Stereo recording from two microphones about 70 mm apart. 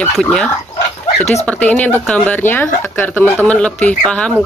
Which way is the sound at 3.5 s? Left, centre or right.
Centre.